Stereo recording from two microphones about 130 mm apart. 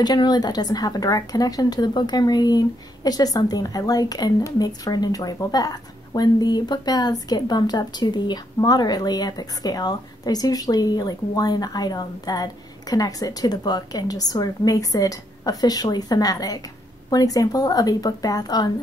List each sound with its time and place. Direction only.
0.0 s speech: 30° left (ahead or behind)